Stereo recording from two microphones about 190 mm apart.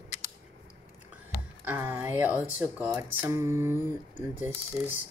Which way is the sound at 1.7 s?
10° right (ahead or behind).